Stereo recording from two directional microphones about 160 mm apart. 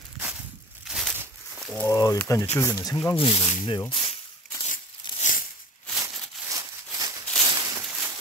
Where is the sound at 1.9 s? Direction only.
20° left (ahead or behind).